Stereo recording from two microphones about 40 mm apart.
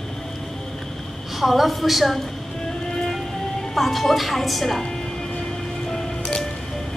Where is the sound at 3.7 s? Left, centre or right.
Centre.